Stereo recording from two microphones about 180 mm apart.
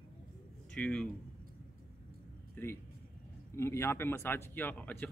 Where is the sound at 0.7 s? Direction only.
5° left (ahead or behind).